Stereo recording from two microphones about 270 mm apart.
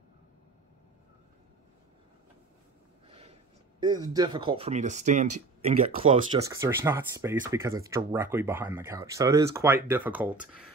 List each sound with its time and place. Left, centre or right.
3.1 s a sound: right
3.8 s speech: centre
6.5 s speech: centre